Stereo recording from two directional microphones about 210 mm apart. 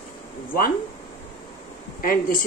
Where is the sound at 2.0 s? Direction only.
40° left (ahead or behind).